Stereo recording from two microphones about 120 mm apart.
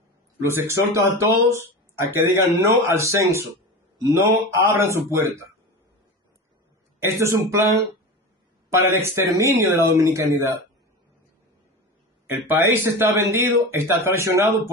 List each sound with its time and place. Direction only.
0.4 s speech: 20° right (ahead or behind)
7.0 s speech: 25° right (ahead or behind)
8.6 s speech: 20° right (ahead or behind)
12.4 s speech: 20° right (ahead or behind)